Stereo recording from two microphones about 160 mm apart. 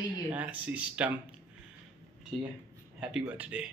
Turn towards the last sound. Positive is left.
turn(degrees=-10)  # may be behind; listen again after turning